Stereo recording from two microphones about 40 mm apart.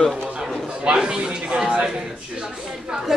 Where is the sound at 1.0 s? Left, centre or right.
Right.